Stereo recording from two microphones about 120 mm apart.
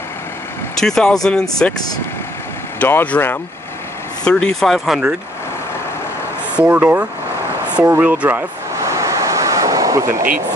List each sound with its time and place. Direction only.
0.7 s speech: 5° left (ahead or behind)
2.8 s speech: 15° left (ahead or behind); by 5.1 s 5° right (ahead or behind)
6.5 s speech: 10° right (ahead or behind)
7.8 s waves: 15° right (ahead or behind)